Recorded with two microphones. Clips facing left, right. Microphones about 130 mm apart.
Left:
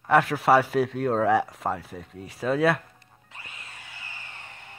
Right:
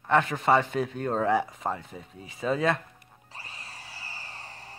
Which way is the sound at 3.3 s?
35° right (ahead or behind).